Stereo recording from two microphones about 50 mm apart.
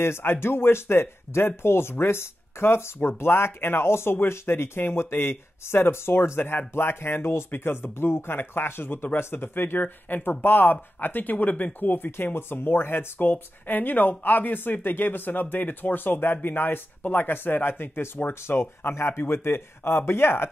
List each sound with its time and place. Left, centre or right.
0.0 s speech: left